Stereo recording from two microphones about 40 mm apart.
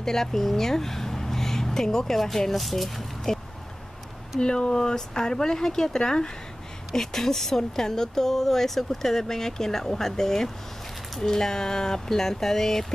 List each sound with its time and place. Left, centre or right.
0.0 s speech: centre
3.3 s speech: centre
6.9 s speech: centre